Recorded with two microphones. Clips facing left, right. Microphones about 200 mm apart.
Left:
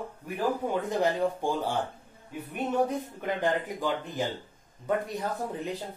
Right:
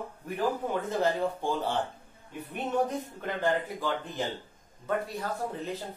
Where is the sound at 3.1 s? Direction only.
15° left (ahead or behind).